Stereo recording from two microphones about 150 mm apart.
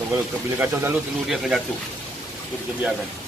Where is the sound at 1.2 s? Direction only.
Centre (ahead or behind).